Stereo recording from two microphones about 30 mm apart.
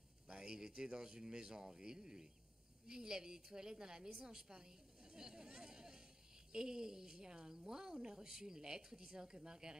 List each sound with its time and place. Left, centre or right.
0.4 s a woman's voice: right